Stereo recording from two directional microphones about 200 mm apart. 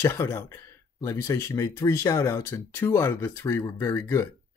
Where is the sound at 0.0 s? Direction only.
10° left (ahead or behind).